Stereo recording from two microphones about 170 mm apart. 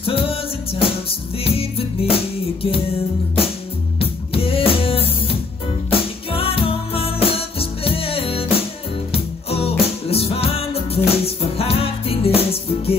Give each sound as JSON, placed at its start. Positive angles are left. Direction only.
{"t": 0.0, "sound": "music", "side_deg": 35}
{"t": 1.4, "sound": "music", "side_deg": 35}
{"t": 4.0, "sound": "music", "side_deg": 35}